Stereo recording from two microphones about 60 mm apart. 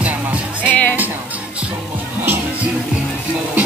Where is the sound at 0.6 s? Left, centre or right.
Left.